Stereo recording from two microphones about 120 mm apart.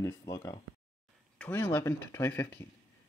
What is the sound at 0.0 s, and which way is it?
Speech, 25° left (ahead or behind).